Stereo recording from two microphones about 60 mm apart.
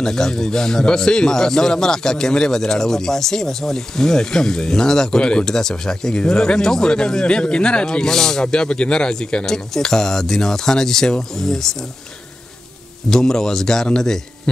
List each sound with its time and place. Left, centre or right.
0.0 s a man's voice: centre
13.1 s a man's voice: centre